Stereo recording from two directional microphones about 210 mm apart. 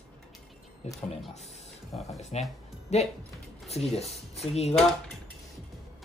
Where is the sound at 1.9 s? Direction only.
Centre (ahead or behind).